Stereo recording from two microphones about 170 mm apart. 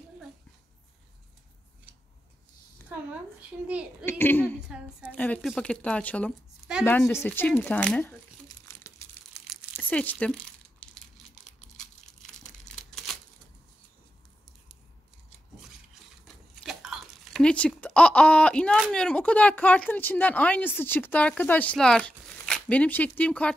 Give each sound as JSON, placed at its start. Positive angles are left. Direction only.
{"t": 4.0, "sound": "speech", "side_deg": 15}
{"t": 8.6, "sound": "crumpling", "side_deg": 15}
{"t": 9.8, "sound": "speech", "side_deg": 10}
{"t": 12.4, "sound": "crumpling", "side_deg": 0}
{"t": 16.6, "sound": "speech", "side_deg": 0}